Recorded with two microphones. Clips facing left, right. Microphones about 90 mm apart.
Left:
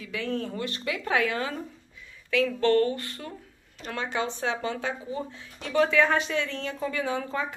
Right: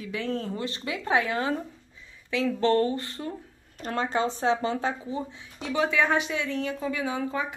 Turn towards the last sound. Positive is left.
turn(degrees=-10)  # may be behind; listen again after turning